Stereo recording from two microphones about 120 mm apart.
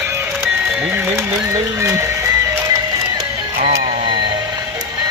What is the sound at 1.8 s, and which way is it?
Speech, 25° right (ahead or behind).